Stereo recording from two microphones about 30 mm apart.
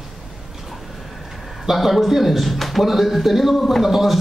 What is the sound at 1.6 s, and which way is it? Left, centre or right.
Speech, centre.